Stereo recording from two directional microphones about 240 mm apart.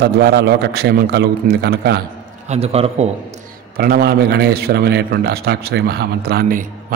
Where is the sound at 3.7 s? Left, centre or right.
Right.